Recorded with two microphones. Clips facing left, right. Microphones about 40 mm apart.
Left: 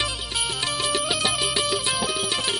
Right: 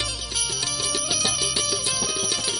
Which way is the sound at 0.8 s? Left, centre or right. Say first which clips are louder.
Left 3 dB; left.